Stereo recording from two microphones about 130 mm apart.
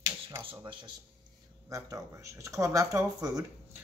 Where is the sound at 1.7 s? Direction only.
25° right (ahead or behind).